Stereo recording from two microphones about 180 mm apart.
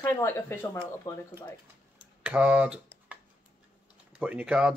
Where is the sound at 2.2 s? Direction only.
5° right (ahead or behind).